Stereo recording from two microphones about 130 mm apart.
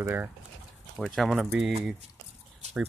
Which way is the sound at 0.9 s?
Centre (ahead or behind).